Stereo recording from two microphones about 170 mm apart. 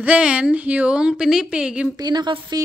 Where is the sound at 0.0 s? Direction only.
5° right (ahead or behind).